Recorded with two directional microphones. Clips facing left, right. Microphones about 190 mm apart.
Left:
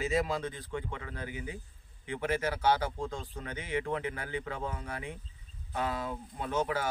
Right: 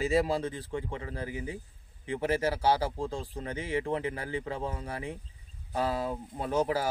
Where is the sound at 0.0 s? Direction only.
30° right (ahead or behind).